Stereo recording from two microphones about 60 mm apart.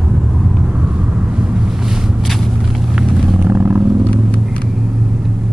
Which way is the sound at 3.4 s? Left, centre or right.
Right.